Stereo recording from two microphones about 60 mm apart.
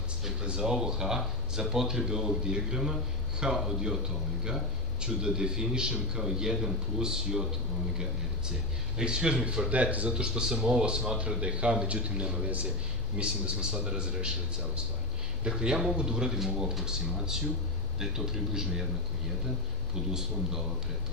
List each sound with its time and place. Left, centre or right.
0.2 s speech: centre
8.9 s speech: centre
10.1 s speech: centre
15.4 s speech: centre
20.1 s speech: centre